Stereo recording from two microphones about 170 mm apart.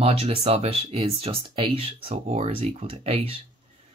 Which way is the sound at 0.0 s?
35° right (ahead or behind).